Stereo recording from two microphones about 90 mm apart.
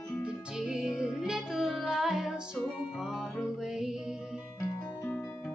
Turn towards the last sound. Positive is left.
turn(degrees=-5)  # may be behind; listen again after turning